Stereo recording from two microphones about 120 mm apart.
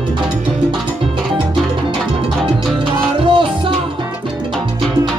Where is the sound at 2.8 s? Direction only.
45° right (ahead or behind).